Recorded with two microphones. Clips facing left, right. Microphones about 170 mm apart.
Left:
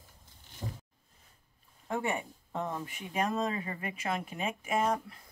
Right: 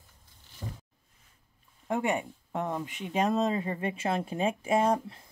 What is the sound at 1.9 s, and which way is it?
Speech, 15° right (ahead or behind).